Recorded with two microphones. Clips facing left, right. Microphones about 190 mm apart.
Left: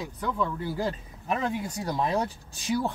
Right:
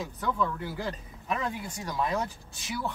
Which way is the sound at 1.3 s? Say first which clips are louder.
Left 4 dB; 35° left (ahead or behind).